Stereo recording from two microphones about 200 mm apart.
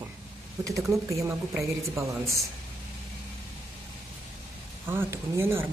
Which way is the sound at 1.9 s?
15° right (ahead or behind).